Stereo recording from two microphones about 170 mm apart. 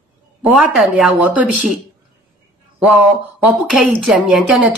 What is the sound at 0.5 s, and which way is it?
Speech, 5° right (ahead or behind).